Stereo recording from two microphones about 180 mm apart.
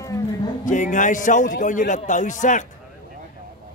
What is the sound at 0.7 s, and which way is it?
A man's voice, 45° left (ahead or behind).